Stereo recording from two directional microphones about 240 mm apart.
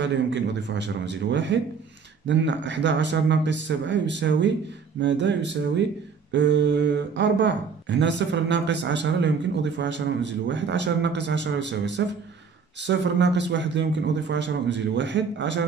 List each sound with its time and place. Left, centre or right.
0.0 s speech: right